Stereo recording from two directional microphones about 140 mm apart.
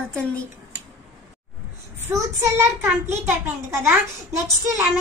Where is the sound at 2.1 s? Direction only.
15° right (ahead or behind).